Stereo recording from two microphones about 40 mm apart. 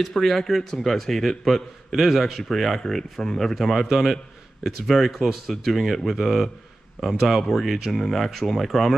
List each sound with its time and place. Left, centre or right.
0.0 s speech: centre